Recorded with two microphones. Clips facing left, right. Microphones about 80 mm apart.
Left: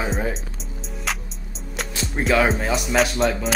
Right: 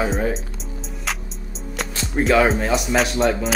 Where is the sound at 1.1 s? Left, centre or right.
Centre.